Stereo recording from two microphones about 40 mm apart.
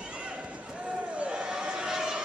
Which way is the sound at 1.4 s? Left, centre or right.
Centre.